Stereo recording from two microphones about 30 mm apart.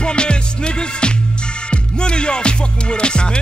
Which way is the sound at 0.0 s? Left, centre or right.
Left.